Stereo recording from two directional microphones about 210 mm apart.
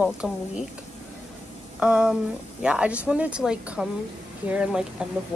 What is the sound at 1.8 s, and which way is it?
A woman's voice, 5° right (ahead or behind).